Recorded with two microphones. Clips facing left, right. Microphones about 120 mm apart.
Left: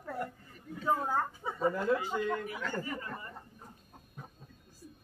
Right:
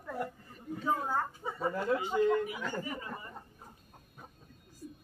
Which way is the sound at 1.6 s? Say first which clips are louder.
Left 2 dB; 5° right (ahead or behind).